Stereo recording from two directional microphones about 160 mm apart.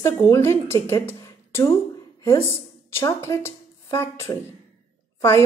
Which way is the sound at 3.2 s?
15° left (ahead or behind).